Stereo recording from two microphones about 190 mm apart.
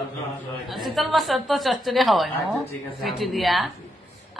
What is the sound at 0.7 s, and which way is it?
A woman's voice, centre (ahead or behind).